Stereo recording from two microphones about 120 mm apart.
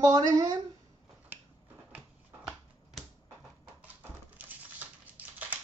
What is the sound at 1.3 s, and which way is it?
Finger snapping, 15° right (ahead or behind).